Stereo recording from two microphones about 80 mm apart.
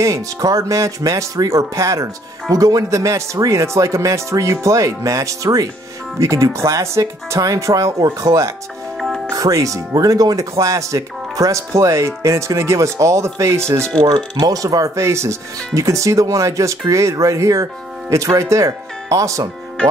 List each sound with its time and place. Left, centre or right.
0.0 s speech: right
14.4 s speech: right